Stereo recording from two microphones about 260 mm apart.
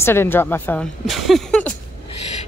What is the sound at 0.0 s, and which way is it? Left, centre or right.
Speech, centre.